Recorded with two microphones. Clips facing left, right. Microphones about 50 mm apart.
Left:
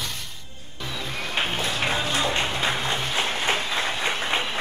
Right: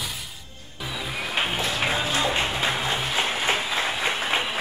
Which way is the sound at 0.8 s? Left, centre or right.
Centre.